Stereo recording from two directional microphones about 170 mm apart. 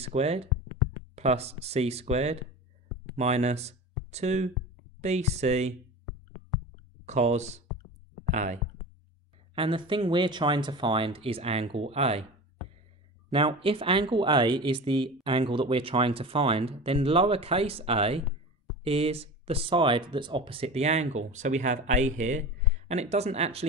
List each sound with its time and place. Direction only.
0.0 s speech: 40° right (ahead or behind)
7.1 s speech: 40° right (ahead or behind)
9.6 s speech: 30° right (ahead or behind)
13.3 s speech: 30° right (ahead or behind)